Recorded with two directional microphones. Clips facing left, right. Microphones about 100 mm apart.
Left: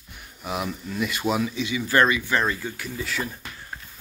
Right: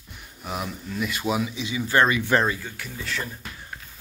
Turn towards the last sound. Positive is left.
turn(degrees=5)  # may be behind; listen again after turning